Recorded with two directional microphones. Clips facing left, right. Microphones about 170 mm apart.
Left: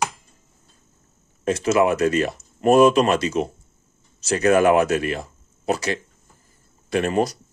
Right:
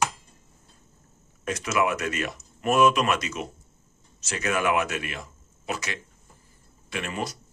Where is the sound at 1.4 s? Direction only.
30° left (ahead or behind).